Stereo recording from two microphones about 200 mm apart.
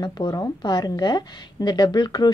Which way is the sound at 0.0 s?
20° left (ahead or behind).